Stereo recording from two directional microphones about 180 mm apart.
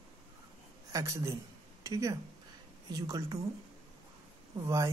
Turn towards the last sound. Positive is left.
turn(degrees=-15)  # may be behind; listen again after turning